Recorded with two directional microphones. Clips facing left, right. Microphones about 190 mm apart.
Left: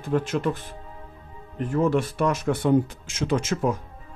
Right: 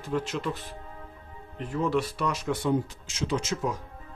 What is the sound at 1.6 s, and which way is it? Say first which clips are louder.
Speech: left 5 dB; 45° left (ahead or behind).